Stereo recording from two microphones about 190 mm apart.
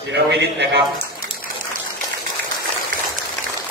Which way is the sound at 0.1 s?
60° right (ahead or behind).